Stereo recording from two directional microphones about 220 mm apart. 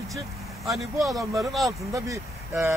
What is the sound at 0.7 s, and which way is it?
Speech, centre (ahead or behind).